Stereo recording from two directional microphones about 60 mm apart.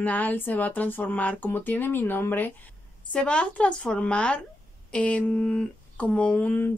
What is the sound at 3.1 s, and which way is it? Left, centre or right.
A woman's voice, centre.